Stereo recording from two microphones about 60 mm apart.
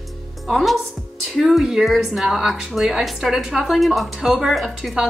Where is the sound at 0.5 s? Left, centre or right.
Centre.